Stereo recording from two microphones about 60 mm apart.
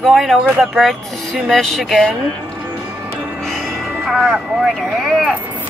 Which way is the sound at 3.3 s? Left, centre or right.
Centre.